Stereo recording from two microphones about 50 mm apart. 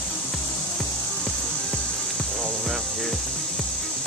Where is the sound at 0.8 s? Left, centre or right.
Centre.